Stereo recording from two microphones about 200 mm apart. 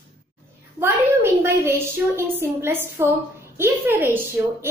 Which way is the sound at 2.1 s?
10° right (ahead or behind).